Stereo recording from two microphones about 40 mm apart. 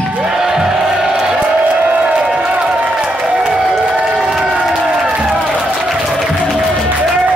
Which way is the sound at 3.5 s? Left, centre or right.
Centre.